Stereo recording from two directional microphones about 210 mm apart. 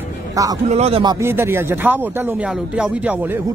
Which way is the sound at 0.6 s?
30° right (ahead or behind).